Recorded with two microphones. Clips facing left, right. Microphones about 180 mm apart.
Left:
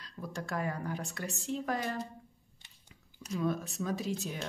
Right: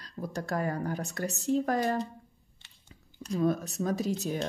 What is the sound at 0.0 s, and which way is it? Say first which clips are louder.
Speech: right 5 dB; 40° right (ahead or behind).